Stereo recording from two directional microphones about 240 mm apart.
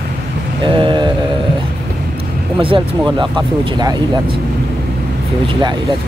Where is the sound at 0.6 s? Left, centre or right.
Centre.